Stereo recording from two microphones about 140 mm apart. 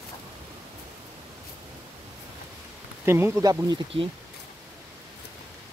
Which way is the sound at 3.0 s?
15° right (ahead or behind).